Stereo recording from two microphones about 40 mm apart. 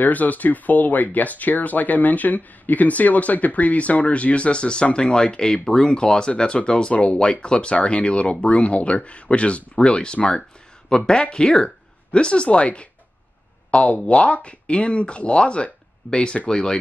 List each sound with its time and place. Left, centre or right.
0.0 s speech: left; by 16.8 s centre